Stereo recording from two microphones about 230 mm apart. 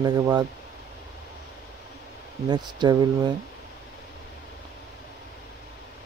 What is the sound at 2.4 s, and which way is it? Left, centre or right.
Speech, centre.